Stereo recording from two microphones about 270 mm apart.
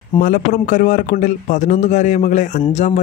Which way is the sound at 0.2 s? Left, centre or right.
Left.